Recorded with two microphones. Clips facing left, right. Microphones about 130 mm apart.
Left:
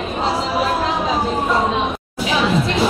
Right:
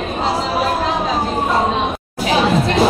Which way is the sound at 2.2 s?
50° right (ahead or behind).